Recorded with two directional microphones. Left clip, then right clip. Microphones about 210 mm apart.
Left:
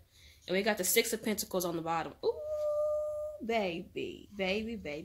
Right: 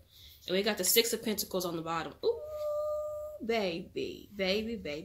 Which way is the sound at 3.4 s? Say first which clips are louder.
Right 2 dB; 20° left (ahead or behind).